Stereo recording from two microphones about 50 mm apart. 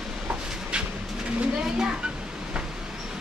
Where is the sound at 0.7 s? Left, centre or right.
Centre.